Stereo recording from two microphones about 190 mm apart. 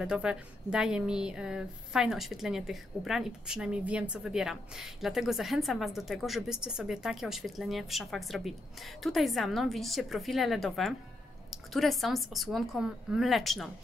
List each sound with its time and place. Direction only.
0.0 s a woman's voice: 5° right (ahead or behind)